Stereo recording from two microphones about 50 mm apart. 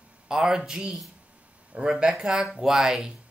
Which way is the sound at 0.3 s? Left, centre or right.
Centre.